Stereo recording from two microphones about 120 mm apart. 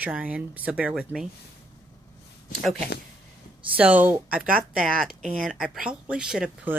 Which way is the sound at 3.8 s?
10° right (ahead or behind).